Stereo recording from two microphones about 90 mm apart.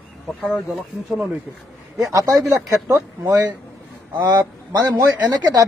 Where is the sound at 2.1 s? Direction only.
40° right (ahead or behind).